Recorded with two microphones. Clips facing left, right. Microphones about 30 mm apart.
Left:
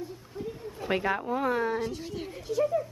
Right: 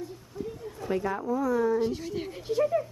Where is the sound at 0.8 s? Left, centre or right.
Left.